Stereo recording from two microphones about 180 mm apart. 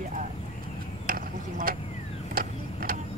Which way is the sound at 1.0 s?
55° right (ahead or behind).